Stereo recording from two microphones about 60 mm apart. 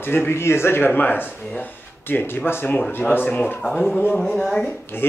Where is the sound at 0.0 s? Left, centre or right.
Left.